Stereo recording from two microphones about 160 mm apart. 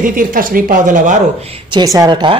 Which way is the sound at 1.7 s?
25° right (ahead or behind).